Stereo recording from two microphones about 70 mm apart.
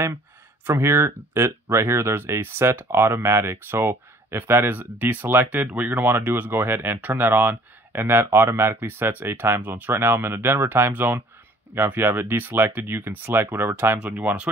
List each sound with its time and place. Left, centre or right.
0.7 s speech: right